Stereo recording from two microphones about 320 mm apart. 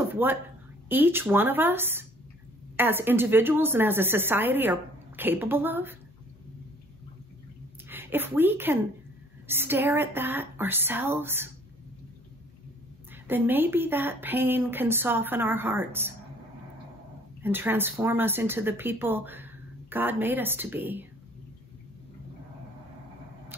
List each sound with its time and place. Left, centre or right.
0.1 s a sound: centre
0.8 s speech: centre
7.9 s a woman's voice: centre
13.1 s speech: centre
17.4 s speech: centre